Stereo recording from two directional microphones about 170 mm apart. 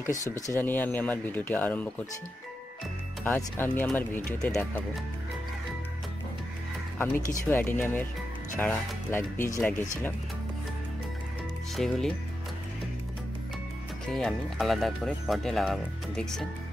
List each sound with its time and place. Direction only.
0.0 s speech: 15° left (ahead or behind)
3.3 s speech: 10° left (ahead or behind)
7.4 s speech: 10° left (ahead or behind)
11.7 s speech: centre (ahead or behind)
14.0 s speech: 5° left (ahead or behind)